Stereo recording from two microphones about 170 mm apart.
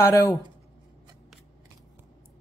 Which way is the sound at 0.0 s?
20° left (ahead or behind).